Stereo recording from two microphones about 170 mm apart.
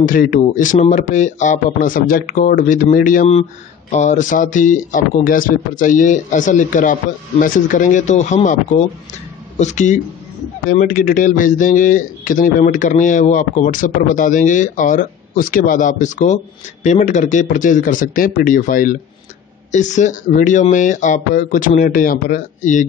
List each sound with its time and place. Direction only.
0.0 s speech: 55° left (ahead or behind)
9.6 s speech: 45° left (ahead or behind)